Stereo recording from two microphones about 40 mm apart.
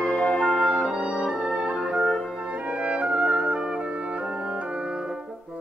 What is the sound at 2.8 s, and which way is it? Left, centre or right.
Music, right.